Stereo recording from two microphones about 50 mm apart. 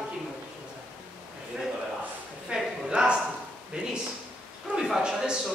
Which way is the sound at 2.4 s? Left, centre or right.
Centre.